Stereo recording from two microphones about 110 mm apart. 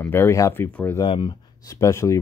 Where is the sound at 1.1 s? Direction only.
45° left (ahead or behind).